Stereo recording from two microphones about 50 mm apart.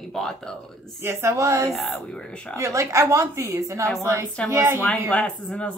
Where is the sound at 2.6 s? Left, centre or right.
Right.